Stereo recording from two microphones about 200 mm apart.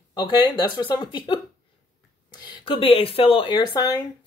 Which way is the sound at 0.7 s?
25° left (ahead or behind).